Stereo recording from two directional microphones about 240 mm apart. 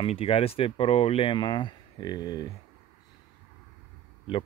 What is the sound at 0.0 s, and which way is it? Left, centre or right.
Speech, left.